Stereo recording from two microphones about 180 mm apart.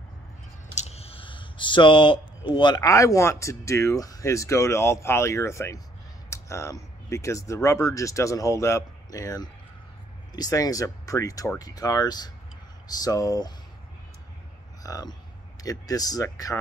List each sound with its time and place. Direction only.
0.7 s a sound: 35° left (ahead or behind)
2.5 s speech: 25° left (ahead or behind)
14.8 s speech: 20° left (ahead or behind)